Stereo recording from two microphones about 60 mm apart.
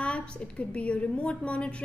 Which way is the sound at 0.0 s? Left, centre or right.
Left.